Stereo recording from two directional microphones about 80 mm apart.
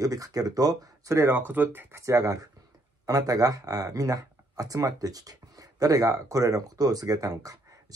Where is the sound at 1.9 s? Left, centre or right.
Right.